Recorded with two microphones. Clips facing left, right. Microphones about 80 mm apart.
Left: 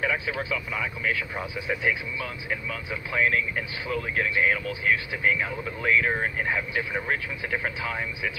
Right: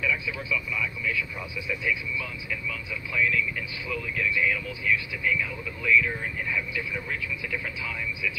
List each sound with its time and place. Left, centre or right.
0.0 s speech: left